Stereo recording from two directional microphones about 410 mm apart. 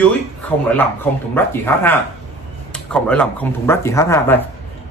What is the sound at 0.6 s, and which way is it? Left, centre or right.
Speech, centre.